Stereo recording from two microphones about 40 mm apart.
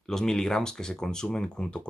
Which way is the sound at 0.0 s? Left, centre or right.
Centre.